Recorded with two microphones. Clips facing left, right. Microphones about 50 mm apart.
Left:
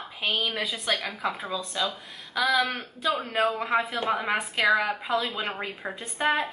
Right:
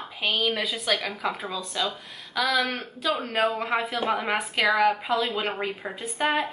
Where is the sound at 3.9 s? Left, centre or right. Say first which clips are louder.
Right 1 dB; centre.